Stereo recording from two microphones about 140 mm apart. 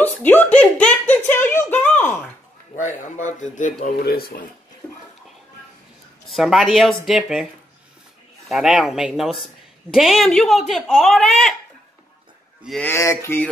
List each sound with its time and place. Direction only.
0.0 s speech: 15° left (ahead or behind)
2.7 s speech: 65° left (ahead or behind); by 4.5 s 90° left
4.8 s speech: 10° left (ahead or behind)
6.2 s speech: centre (ahead or behind)
8.5 s speech: 5° right (ahead or behind)
12.8 s speech: 20° left (ahead or behind)